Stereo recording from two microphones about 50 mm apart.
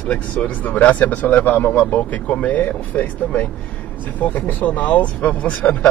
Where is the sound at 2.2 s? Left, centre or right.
Left.